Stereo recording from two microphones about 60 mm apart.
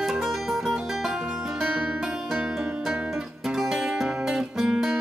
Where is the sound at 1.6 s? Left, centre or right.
Centre.